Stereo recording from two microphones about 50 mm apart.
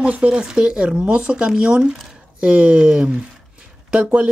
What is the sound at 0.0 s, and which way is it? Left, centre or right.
Speech, right.